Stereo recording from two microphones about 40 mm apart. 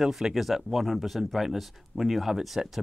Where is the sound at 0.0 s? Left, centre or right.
Centre.